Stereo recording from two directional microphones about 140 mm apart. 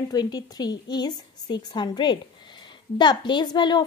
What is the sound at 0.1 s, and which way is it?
A woman's voice, 30° left (ahead or behind).